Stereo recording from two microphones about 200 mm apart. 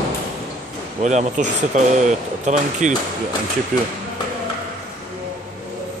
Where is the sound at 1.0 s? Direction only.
35° right (ahead or behind).